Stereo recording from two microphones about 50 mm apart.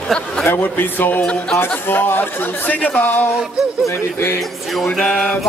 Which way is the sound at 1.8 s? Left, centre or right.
Left.